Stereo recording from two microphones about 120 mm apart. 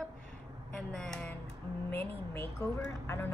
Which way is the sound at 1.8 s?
20° left (ahead or behind).